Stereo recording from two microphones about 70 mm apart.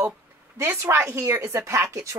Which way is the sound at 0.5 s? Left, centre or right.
Right.